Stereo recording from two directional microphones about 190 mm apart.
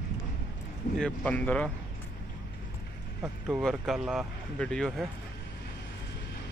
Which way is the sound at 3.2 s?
Centre (ahead or behind).